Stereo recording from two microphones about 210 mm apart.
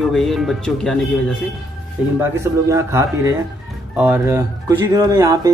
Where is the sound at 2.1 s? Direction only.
15° right (ahead or behind).